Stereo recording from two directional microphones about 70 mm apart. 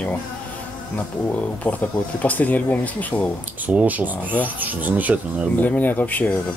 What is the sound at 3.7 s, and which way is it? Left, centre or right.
Speech, right.